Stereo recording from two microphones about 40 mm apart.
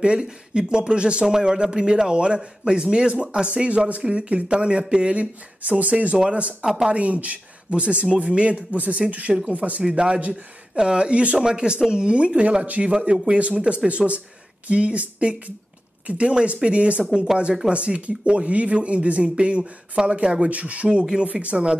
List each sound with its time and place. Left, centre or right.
0.0 s a man's voice: right
5.6 s speech: right
6.1 s a man's voice: right
6.9 s speech: right
8.7 s speech: right
9.8 s a man's voice: right
12.6 s speech: right
12.9 s a man's voice: right
19.6 s a man's voice: centre
20.4 s speech: right